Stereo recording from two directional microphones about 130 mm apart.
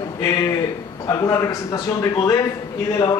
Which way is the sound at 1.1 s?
25° left (ahead or behind).